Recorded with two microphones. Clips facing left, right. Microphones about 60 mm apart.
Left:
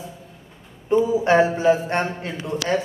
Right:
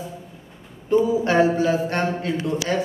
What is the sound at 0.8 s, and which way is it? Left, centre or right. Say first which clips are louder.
A man's voice: left 1 dB; left.